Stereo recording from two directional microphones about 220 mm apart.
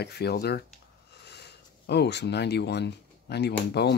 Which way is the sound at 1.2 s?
50° left (ahead or behind).